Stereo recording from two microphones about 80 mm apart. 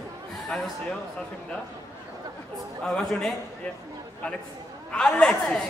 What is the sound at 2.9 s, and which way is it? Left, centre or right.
Speech, centre.